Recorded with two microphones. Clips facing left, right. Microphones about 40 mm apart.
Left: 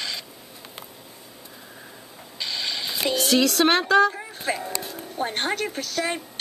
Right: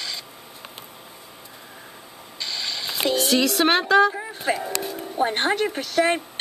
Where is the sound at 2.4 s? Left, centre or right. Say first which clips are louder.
Even; centre.